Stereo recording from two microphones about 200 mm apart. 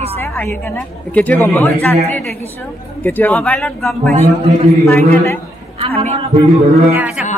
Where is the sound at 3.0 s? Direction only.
10° left (ahead or behind).